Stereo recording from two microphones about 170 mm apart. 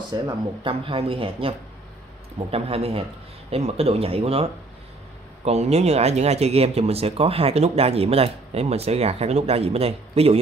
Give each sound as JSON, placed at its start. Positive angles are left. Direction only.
{"t": 0.3, "sound": "speech", "side_deg": -30}